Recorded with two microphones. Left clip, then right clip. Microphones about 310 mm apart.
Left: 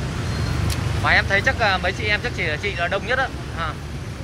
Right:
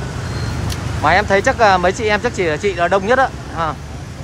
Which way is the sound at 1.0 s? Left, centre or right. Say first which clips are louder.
Right 5 dB; centre.